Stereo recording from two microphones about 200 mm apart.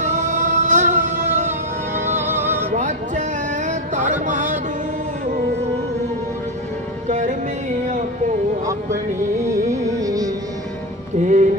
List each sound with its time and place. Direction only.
0.0 s music: 40° right (ahead or behind)
2.0 s music: 10° right (ahead or behind)
2.7 s a sound: 40° right (ahead or behind)
7.1 s music: 35° right (ahead or behind)
9.4 s music: 15° right (ahead or behind)
9.8 s carnatic music: 15° right (ahead or behind)
11.1 s music: 40° right (ahead or behind)